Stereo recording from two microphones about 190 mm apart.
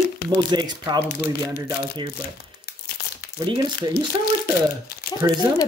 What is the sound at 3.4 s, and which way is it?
Speech, 25° right (ahead or behind).